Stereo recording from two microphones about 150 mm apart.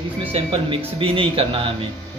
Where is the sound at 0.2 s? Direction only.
40° right (ahead or behind).